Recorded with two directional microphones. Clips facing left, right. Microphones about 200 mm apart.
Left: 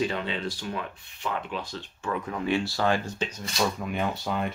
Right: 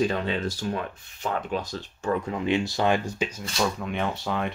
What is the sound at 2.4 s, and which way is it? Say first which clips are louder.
Speech: right 1 dB; 20° right (ahead or behind).